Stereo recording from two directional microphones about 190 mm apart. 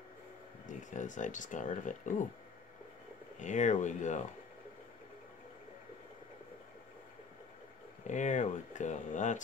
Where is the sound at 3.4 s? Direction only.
40° left (ahead or behind).